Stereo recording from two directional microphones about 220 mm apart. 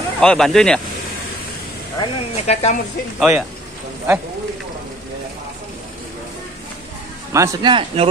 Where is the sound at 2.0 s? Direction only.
30° left (ahead or behind).